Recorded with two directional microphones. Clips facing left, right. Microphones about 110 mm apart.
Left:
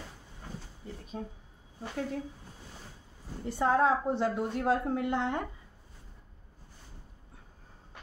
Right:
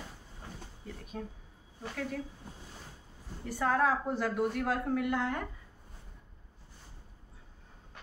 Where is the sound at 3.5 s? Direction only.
20° left (ahead or behind).